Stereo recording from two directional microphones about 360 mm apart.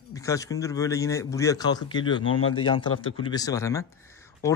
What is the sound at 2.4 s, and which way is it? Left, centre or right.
Speech, left.